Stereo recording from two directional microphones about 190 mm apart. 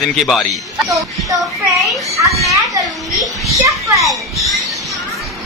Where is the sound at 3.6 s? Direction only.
15° right (ahead or behind).